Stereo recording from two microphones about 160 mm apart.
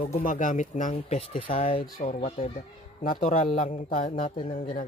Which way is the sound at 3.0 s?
55° left (ahead or behind).